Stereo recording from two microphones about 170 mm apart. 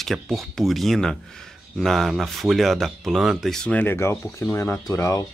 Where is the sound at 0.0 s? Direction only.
Centre (ahead or behind); by 5.2 s 15° left (ahead or behind).